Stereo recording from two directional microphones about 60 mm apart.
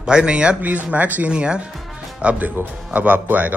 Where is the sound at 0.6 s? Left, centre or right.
Right.